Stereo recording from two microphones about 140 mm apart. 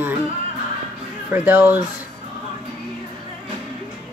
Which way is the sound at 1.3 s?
15° right (ahead or behind).